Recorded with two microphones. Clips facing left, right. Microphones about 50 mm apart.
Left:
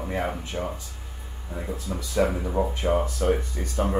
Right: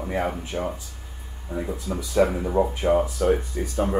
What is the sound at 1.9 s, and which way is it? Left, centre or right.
Speech, centre.